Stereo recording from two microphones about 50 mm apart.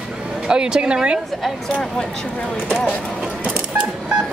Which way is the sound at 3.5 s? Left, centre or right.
Right.